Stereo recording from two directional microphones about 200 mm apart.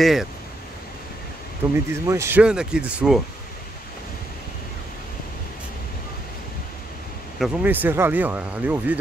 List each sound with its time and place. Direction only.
0.0 s speech: centre (ahead or behind)
1.9 s speech: 15° right (ahead or behind)
7.3 s speech: 5° right (ahead or behind)